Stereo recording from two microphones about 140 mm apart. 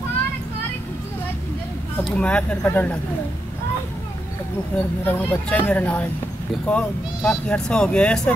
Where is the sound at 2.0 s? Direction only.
5° left (ahead or behind).